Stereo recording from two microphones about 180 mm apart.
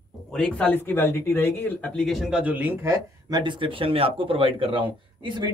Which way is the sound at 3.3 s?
25° right (ahead or behind).